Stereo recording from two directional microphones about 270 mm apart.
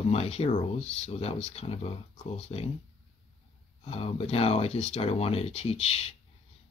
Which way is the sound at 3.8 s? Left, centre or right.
Left.